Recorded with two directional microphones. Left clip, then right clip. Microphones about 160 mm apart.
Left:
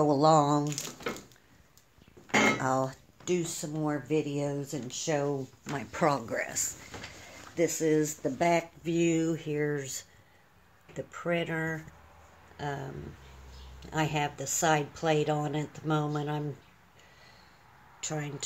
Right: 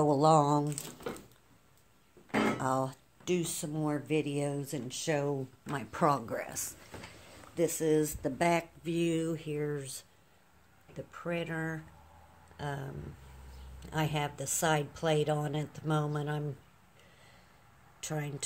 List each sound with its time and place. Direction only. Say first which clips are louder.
0.0 s speech: left 2 dB; centre (ahead or behind)
2.6 s speech: left 3 dB; 5° left (ahead or behind)
8.8 s speech: left 4 dB; 15° left (ahead or behind)
12.5 s speech: left 3 dB; centre (ahead or behind)
18.0 s speech: left 2 dB; 5° right (ahead or behind)